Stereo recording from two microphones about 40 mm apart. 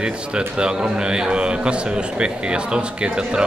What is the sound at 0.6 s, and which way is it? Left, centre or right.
A man's voice, right.